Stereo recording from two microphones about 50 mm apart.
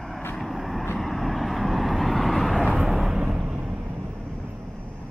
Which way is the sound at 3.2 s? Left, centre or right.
Centre.